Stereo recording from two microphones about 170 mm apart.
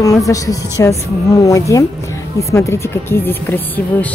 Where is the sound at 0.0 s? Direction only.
20° left (ahead or behind).